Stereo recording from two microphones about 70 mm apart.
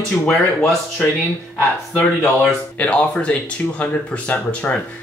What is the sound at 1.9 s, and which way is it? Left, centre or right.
Speech, left.